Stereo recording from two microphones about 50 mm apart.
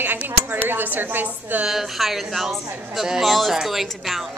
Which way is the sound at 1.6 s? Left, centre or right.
Centre.